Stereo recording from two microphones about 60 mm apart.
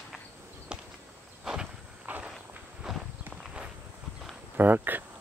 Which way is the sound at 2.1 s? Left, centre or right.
Right.